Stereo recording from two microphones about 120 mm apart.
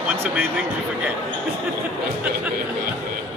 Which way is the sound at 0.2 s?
15° right (ahead or behind).